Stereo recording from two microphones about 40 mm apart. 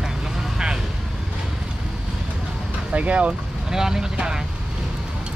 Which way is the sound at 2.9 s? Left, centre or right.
Right.